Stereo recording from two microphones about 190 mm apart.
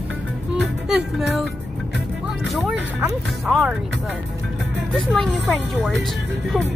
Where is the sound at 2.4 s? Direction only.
Centre (ahead or behind).